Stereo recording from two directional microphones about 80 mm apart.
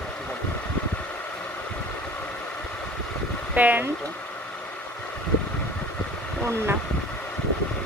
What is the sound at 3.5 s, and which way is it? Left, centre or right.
Speech, right.